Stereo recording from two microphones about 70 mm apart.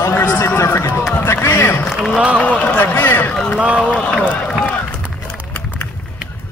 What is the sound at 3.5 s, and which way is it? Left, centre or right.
Speech, centre.